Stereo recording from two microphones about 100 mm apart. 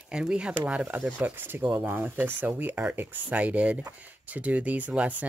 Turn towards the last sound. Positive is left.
turn(degrees=-15)  # may be behind; listen again after turning